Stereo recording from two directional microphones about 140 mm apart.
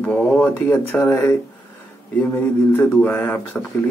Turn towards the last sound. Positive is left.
turn(degrees=10)  # may be behind; listen again after turning